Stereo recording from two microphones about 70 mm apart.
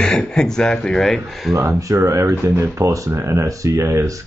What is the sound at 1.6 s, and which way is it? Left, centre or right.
Speech, right.